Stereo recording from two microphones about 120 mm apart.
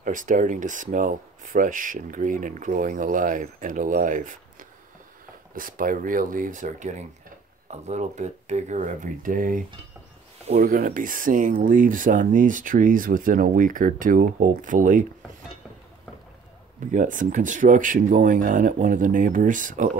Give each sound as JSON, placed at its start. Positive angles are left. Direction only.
{"t": 0.0, "sound": "speech", "side_deg": -90}
{"t": 6.3, "sound": "speech", "side_deg": -90}
{"t": 7.7, "sound": "speech", "side_deg": -70}
{"t": 16.8, "sound": "speech", "side_deg": -90}